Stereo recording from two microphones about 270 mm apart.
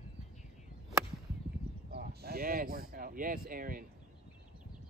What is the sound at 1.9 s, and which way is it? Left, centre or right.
Speech, right.